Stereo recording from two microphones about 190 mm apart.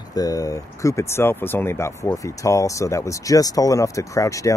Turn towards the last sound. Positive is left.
turn(degrees=15)  # may be behind; listen again after turning